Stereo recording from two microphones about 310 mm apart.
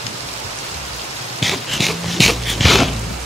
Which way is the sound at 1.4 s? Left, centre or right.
Centre.